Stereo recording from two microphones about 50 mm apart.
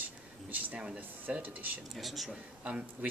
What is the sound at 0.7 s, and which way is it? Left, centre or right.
Speech, centre.